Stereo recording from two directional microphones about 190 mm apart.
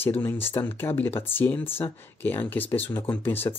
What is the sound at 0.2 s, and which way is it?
Speech, 10° left (ahead or behind).